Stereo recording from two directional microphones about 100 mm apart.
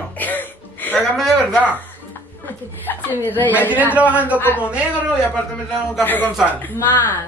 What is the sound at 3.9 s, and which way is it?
Speech, 15° right (ahead or behind).